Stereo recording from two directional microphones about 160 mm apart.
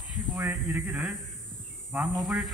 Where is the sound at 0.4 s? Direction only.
20° right (ahead or behind).